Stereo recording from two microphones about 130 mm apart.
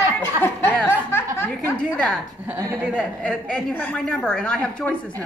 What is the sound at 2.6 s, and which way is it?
Speech, 25° right (ahead or behind).